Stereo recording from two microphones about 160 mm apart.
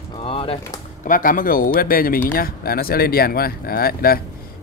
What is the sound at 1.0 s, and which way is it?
A man's voice, 60° left (ahead or behind).